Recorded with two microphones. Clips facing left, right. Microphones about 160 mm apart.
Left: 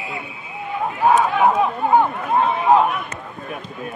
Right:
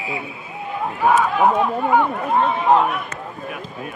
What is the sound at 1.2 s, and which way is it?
Speech, centre (ahead or behind).